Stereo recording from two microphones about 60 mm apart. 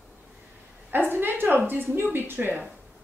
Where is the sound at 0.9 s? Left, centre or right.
Right.